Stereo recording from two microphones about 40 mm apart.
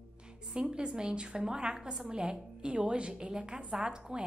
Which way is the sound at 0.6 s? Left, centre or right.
Right.